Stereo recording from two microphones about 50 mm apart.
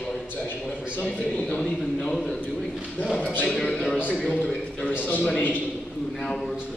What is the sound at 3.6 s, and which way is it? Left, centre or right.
Speech, centre.